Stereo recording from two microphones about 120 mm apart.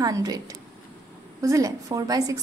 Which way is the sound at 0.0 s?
30° right (ahead or behind).